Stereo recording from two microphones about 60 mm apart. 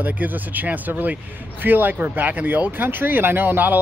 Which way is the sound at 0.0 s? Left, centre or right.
Right.